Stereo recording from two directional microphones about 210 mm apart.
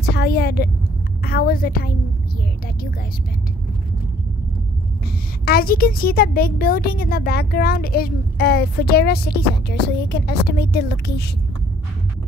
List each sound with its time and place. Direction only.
0.0 s a woman's voice: 50° left (ahead or behind)
5.4 s speech: 45° left (ahead or behind)